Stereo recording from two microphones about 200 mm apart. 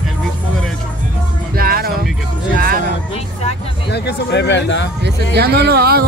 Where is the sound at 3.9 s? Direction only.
55° left (ahead or behind).